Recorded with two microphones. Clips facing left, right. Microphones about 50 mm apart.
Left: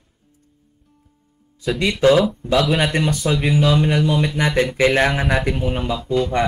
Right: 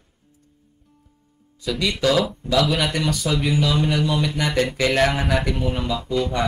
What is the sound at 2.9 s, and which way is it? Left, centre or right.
Speech, left.